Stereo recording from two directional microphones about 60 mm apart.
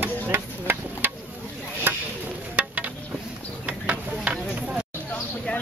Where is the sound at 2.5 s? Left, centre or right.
Right.